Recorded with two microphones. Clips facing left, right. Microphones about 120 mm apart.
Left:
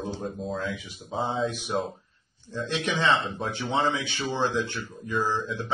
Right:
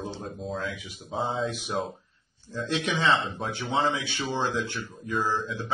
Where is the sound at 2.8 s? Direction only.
15° right (ahead or behind).